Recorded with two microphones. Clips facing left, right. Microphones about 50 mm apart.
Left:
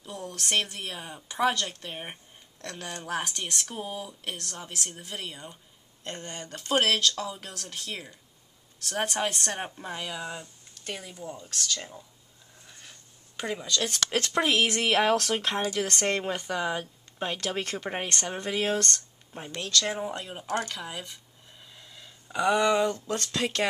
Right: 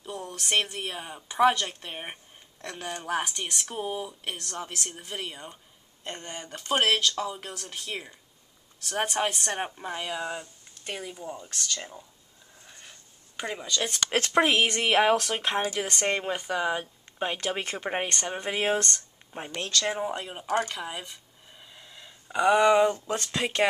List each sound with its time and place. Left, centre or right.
0.0 s a woman's voice: centre
3.6 s a woman's voice: centre
12.6 s a sound: centre
13.4 s speech: centre
14.1 s speech: right
14.7 s a woman's voice: centre
15.9 s a woman's voice: centre
18.5 s speech: right